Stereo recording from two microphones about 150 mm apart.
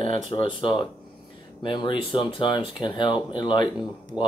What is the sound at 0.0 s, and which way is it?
Speech, 35° left (ahead or behind).